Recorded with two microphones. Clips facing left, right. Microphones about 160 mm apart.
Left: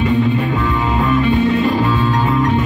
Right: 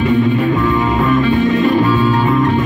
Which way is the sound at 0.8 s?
20° left (ahead or behind).